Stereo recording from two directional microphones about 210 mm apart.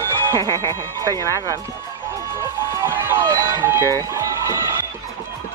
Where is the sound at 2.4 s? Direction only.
15° right (ahead or behind).